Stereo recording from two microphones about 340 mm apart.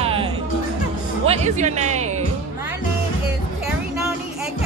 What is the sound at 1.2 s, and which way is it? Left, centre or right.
Speech, centre.